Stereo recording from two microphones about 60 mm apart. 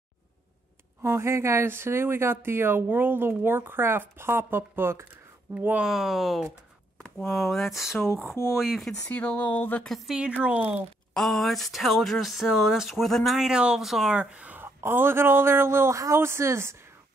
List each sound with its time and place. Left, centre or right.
1.0 s speech: right
5.9 s speech: centre
9.1 s speech: left
9.8 s speech: centre
10.1 s speech: centre
11.1 s speech: centre
13.6 s speech: centre
14.1 s speech: centre
14.6 s a man's voice: right